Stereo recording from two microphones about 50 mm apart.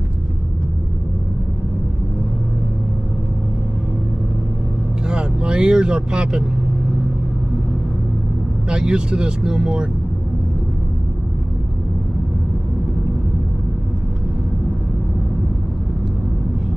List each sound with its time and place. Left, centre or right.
5.0 s vehicle: centre
8.6 s speech: centre